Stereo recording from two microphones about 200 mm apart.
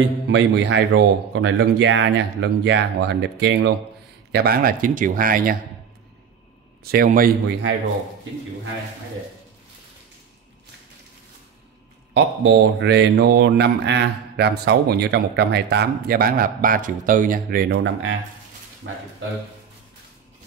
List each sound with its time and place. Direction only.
0.3 s speech: 65° right (ahead or behind); by 5.6 s 45° right (ahead or behind)
6.8 s speech: 50° right (ahead or behind)
12.1 s speech: 60° right (ahead or behind)
18.8 s speech: 70° right (ahead or behind)